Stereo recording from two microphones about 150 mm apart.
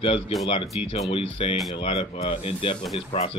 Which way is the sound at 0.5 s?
40° left (ahead or behind).